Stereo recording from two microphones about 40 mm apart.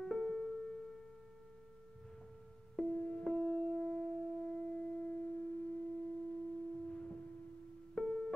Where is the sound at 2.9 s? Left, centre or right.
Left.